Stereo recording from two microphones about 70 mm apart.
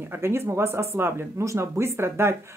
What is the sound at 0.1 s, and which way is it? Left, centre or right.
Speech, right.